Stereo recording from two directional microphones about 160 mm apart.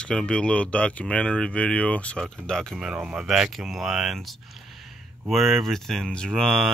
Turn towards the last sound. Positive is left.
turn(degrees=5)  # may be behind; listen again after turning